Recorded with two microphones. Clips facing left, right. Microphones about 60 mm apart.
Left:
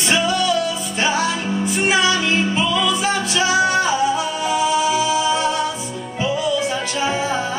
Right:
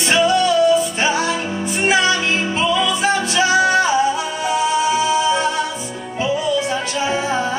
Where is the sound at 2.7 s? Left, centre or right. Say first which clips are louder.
Right 2 dB; centre.